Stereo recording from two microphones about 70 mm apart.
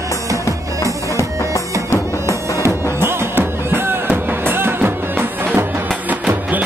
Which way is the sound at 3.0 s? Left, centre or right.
Right.